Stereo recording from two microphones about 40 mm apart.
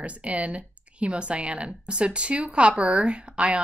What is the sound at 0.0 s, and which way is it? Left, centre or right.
Speech, right.